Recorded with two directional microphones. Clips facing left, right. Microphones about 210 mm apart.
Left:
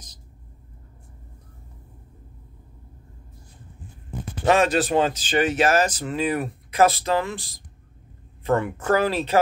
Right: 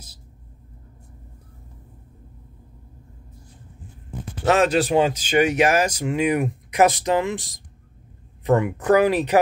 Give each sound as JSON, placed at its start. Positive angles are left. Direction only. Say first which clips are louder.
{"t": 4.5, "sound": "speech", "louder": "right 1 dB", "side_deg": -10}
{"t": 8.5, "sound": "speech", "louder": "right 3 dB", "side_deg": -15}